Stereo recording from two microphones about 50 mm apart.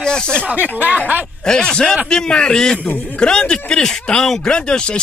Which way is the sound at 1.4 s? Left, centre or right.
Centre.